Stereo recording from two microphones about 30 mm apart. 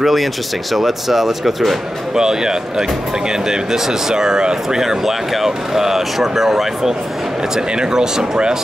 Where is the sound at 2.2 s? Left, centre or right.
Centre.